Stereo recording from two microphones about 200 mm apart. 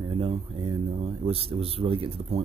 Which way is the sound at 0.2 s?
30° right (ahead or behind).